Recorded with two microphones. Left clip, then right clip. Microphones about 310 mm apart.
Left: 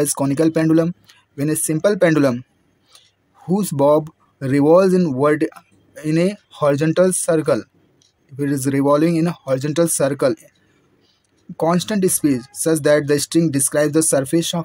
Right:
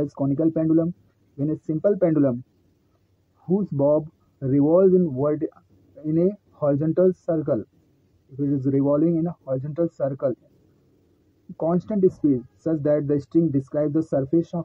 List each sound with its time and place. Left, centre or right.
0.0 s speech: left
3.4 s speech: left
11.5 s speech: left